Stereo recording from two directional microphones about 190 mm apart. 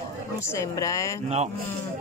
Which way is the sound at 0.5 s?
15° left (ahead or behind).